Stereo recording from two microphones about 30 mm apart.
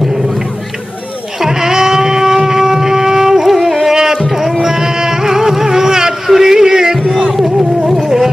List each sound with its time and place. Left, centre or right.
1.4 s shofar: centre
3.4 s music: centre
3.9 s music: centre
7.2 s a sound: centre
7.8 s music: centre